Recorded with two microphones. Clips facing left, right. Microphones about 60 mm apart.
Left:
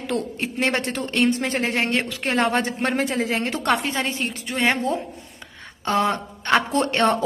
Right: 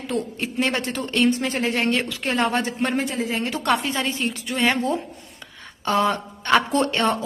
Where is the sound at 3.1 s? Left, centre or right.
Left.